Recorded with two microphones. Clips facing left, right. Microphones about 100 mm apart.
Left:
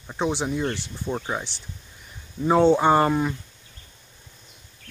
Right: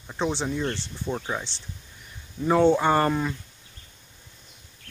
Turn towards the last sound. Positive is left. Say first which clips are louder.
# left 3 dB
turn(degrees=15)  # may be behind; listen again after turning